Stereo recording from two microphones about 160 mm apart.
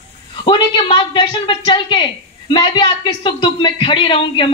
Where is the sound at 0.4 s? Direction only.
30° left (ahead or behind).